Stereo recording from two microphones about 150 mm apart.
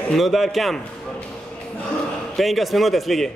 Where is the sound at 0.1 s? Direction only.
Centre (ahead or behind).